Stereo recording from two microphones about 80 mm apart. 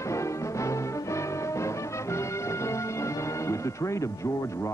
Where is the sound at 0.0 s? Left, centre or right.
Left.